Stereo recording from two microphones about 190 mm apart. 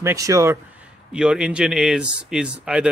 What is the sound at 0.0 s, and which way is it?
Speech, 15° right (ahead or behind).